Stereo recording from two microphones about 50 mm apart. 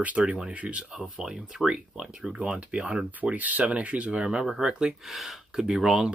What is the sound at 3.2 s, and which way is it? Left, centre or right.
Speech, right.